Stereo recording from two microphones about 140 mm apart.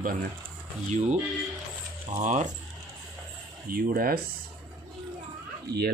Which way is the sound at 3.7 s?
90° right.